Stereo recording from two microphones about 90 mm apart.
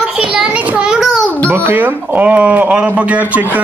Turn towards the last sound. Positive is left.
turn(degrees=-15)  # may be behind; listen again after turning